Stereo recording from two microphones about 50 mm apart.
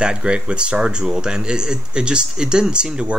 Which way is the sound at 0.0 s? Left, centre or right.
Centre.